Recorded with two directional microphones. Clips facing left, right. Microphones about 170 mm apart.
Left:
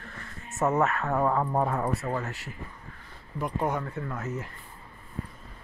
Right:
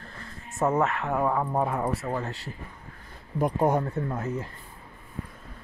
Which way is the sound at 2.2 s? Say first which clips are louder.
Right 2 dB; 30° right (ahead or behind).